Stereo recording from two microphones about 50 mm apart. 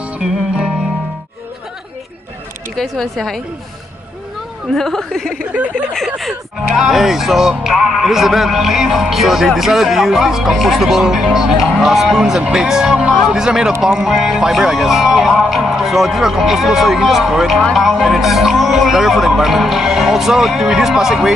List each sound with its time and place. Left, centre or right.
0.2 s music: centre
2.7 s speech: centre
4.7 s a woman's voice: centre
5.4 s speech: right
5.9 s speech: centre